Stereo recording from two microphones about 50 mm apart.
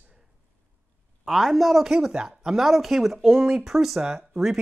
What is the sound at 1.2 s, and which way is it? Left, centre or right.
Speech, centre.